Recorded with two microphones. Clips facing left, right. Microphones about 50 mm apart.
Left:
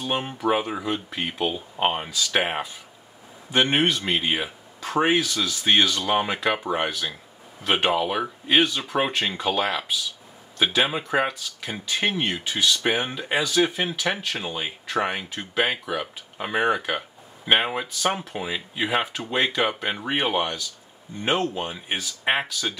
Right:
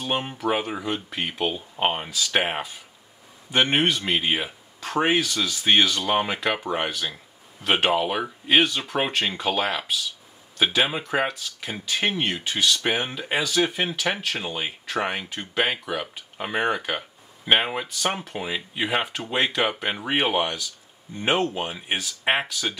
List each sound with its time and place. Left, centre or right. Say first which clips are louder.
0.0 s speech: left 1 dB; centre